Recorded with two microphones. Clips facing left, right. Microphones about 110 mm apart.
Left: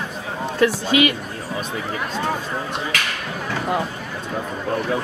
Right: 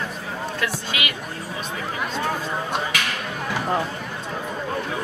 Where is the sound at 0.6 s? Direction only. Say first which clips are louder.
Left 13 dB; 40° left (ahead or behind).